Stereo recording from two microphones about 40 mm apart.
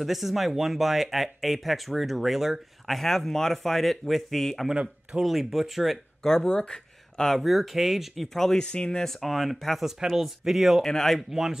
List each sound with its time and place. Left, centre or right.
0.0 s speech: centre
3.0 s speech: centre
5.2 s speech: centre
6.2 s speech: centre
6.6 s a sound: centre
7.3 s speech: centre; by 9.0 s left
9.0 s speech: centre
10.1 s speech: centre
10.8 s speech: centre
11.2 s speech: centre